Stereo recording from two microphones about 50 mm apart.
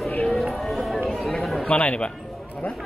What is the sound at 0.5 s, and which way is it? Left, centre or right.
Run, centre.